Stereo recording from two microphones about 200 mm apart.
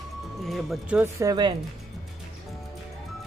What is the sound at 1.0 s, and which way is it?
Speech, 20° right (ahead or behind).